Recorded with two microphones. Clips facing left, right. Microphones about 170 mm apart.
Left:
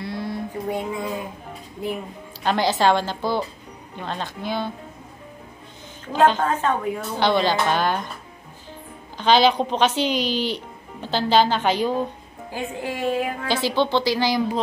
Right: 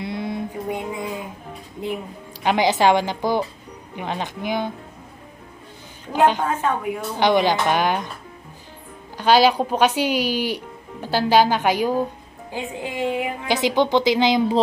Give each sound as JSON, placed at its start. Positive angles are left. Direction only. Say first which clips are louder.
{"t": 0.0, "sound": "a sound", "louder": "right 2 dB", "side_deg": -20}
{"t": 2.4, "sound": "a woman's voice", "louder": "right 2 dB", "side_deg": -15}
{"t": 6.1, "sound": "a woman's voice", "louder": "even", "side_deg": -15}
{"t": 9.1, "sound": "a woman's voice", "louder": "right 1 dB", "side_deg": -10}